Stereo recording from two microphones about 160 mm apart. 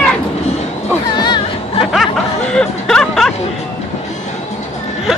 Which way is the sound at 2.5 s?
5° left (ahead or behind).